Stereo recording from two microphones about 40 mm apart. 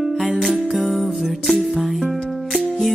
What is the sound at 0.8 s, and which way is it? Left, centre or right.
Music, centre.